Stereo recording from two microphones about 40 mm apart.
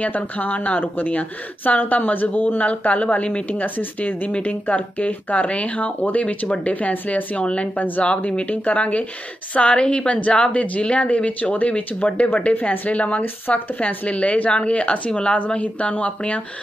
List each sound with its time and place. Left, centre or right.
0.0 s speech: left
3.4 s speech: left
4.3 s speech: left
7.3 s speech: left